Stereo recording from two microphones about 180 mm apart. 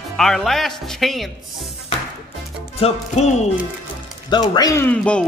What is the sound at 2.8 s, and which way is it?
Music, 40° left (ahead or behind).